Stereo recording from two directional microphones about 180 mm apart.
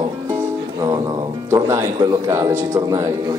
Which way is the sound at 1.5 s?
15° right (ahead or behind).